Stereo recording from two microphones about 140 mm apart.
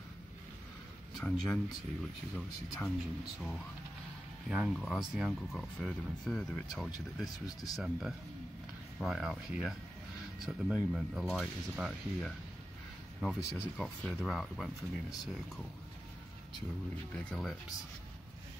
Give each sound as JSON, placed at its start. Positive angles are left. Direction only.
{"t": 1.1, "sound": "speech", "side_deg": 5}
{"t": 4.5, "sound": "speech", "side_deg": -5}
{"t": 7.3, "sound": "speech", "side_deg": 25}
{"t": 7.7, "sound": "speech", "side_deg": -5}
{"t": 17.1, "sound": "speech", "side_deg": 5}